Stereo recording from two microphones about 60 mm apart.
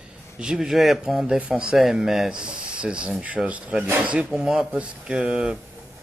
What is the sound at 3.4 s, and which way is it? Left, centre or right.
Speech, centre.